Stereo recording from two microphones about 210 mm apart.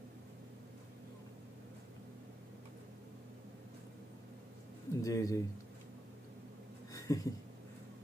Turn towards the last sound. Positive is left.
turn(degrees=15)  # may be behind; listen again after turning